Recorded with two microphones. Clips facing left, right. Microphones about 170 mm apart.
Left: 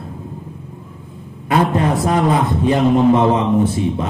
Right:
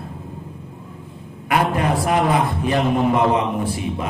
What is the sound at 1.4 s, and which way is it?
A man's voice, 25° left (ahead or behind).